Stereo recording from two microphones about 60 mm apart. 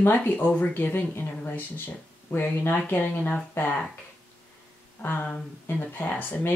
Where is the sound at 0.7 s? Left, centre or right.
Left.